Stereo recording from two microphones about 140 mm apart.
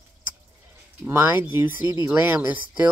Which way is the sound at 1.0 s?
15° right (ahead or behind).